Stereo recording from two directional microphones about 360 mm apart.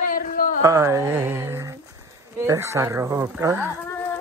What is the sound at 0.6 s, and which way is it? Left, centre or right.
Speech, centre.